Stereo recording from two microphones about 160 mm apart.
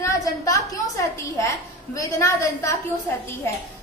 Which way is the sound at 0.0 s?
20° left (ahead or behind).